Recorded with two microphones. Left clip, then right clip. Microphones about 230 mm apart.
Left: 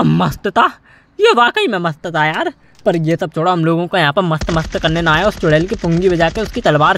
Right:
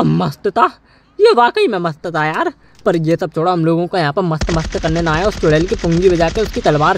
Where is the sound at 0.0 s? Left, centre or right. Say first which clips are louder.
Left 1 dB; left.